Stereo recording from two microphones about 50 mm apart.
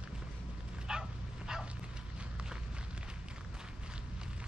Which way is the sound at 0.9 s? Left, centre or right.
Centre.